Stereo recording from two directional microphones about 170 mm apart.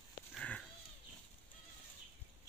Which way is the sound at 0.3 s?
5° left (ahead or behind).